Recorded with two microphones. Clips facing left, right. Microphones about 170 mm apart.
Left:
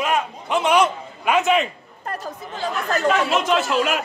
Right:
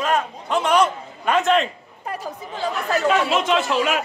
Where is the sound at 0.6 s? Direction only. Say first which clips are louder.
Left 1 dB; centre (ahead or behind).